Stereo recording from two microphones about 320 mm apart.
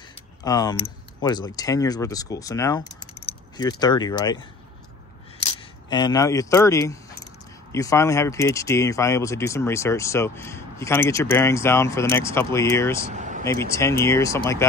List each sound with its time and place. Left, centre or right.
0.4 s speech: centre
13.1 s vehicle: right
13.5 s speech: centre